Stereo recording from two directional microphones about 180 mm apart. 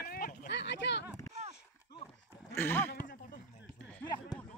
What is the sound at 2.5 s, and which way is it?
Speech, 10° left (ahead or behind).